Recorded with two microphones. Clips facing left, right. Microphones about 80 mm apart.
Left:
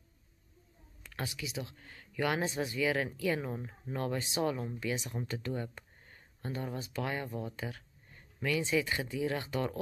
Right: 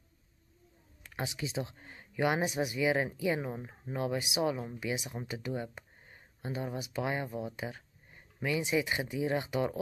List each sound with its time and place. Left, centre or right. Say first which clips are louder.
1.1 s speech: right 3 dB; right